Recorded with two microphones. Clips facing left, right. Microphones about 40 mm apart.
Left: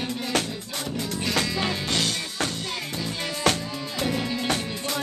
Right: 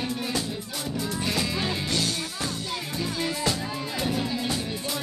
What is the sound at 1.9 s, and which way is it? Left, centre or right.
Music, left.